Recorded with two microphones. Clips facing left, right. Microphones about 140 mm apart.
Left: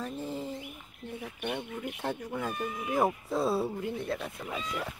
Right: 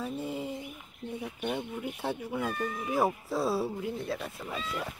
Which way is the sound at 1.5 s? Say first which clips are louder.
Right 1 dB; 10° right (ahead or behind).